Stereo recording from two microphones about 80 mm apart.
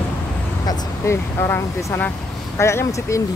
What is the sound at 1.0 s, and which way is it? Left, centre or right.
Speech, left.